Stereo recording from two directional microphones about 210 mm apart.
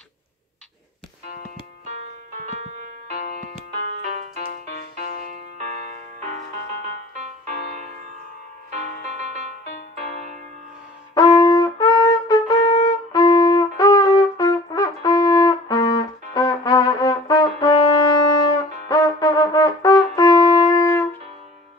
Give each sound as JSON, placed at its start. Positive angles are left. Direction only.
{"t": 2.3, "sound": "music", "side_deg": -35}
{"t": 7.2, "sound": "music", "side_deg": -35}
{"t": 11.1, "sound": "trumpet", "side_deg": 15}
{"t": 18.9, "sound": "brass instrument", "side_deg": 15}